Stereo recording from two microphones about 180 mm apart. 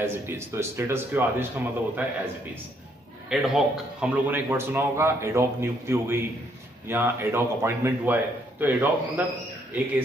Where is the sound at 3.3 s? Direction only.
Centre (ahead or behind).